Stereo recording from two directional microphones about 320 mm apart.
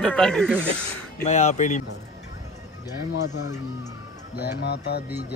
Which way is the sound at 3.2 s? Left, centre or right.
Left.